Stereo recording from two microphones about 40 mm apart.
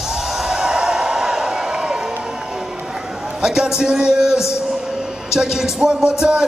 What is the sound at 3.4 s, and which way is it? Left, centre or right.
Speech, centre.